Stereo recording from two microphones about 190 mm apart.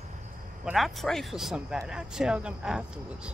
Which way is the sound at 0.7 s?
Centre (ahead or behind).